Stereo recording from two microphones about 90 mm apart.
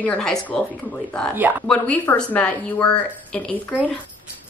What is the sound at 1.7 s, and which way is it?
A woman's voice, 10° left (ahead or behind).